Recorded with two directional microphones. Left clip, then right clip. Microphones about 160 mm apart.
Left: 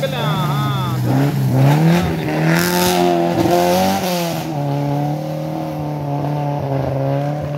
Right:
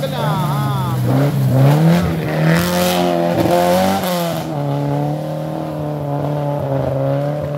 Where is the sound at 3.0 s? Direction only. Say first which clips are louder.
Even; 30° right (ahead or behind).